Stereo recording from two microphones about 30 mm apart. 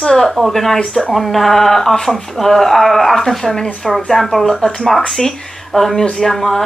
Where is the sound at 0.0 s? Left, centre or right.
Centre.